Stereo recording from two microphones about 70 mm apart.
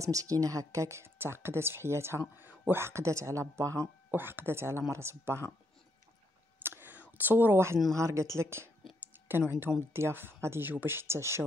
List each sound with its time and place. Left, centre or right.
0.0 s speech: right
4.1 s speech: right
6.8 s a sound: right
7.9 s speech: right